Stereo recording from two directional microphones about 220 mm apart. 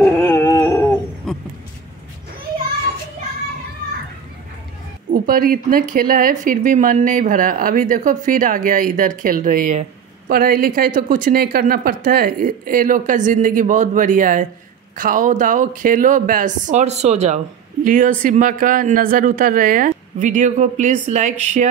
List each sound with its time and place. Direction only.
0.0 s dog: 10° left (ahead or behind)
5.1 s speech: 40° right (ahead or behind)